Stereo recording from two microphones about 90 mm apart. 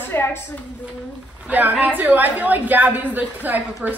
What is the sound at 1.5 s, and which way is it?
A woman's voice, 15° right (ahead or behind).